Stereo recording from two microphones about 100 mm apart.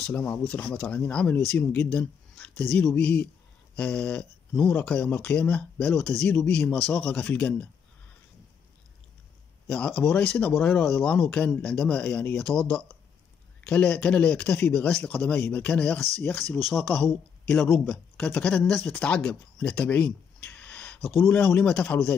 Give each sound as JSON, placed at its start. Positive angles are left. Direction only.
{"t": 0.0, "sound": "speech", "side_deg": 15}
{"t": 9.7, "sound": "speech", "side_deg": 10}
{"t": 17.1, "sound": "a man's voice", "side_deg": 25}
{"t": 17.6, "sound": "speech", "side_deg": 0}
{"t": 17.9, "sound": "speech", "side_deg": 10}